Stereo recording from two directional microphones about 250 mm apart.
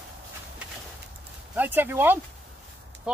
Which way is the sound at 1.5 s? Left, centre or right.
Centre.